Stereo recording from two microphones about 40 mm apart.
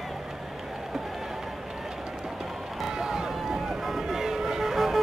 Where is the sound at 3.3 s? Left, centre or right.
Centre.